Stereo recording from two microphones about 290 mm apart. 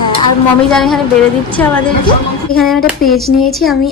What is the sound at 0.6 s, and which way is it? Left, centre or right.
Speech, centre.